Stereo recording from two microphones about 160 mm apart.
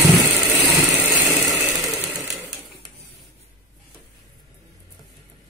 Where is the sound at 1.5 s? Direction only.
Centre (ahead or behind).